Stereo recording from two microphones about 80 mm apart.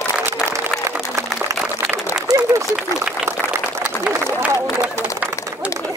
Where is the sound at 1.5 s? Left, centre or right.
Right.